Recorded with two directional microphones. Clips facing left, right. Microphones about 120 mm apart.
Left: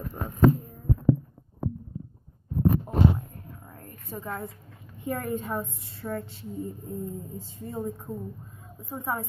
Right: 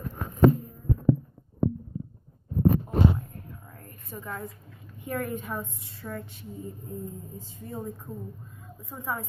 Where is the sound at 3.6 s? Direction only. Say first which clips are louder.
Left 3 dB; 20° left (ahead or behind).